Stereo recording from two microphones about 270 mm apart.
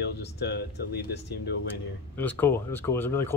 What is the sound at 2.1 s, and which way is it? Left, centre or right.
Speech, centre.